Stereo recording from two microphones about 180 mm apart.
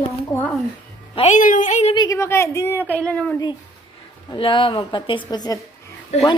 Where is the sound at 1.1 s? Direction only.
40° left (ahead or behind).